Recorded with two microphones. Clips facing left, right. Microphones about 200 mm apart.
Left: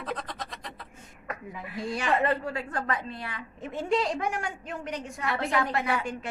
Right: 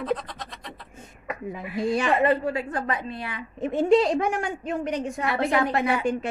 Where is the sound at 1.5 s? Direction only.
20° right (ahead or behind).